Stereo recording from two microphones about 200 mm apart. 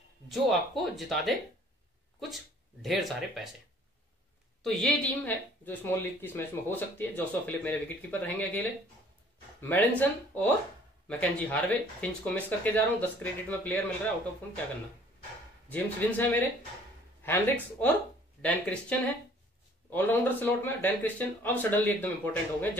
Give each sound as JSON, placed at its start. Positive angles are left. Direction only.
{"t": 0.3, "sound": "speech", "side_deg": 0}
{"t": 4.6, "sound": "a woman's voice", "side_deg": 0}
{"t": 15.7, "sound": "a woman's voice", "side_deg": 10}